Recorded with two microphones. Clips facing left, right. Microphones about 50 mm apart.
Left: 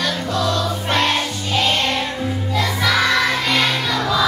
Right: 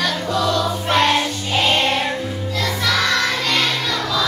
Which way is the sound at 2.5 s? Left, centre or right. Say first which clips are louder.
Left 2 dB; centre.